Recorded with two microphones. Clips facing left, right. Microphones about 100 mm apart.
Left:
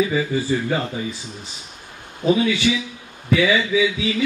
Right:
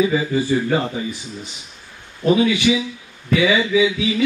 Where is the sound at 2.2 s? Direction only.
15° right (ahead or behind).